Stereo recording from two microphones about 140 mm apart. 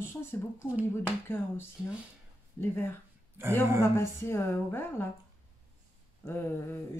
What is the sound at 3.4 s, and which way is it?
Speech, 15° right (ahead or behind).